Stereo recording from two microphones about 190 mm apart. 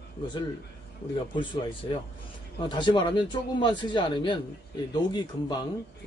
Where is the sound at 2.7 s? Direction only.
25° left (ahead or behind).